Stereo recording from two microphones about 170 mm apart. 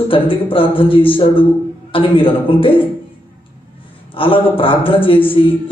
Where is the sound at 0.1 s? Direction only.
30° left (ahead or behind).